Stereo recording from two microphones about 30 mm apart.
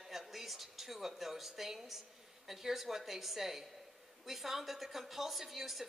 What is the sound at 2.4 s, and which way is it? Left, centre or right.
A woman's voice, centre.